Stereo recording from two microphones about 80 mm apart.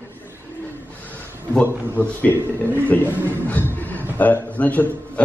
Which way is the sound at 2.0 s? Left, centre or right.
Left.